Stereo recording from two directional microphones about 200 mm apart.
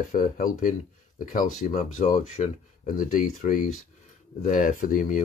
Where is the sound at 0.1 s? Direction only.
40° left (ahead or behind).